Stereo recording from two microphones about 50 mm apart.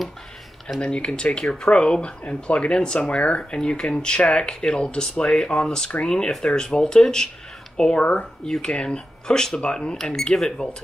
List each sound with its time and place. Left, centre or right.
0.7 s speech: centre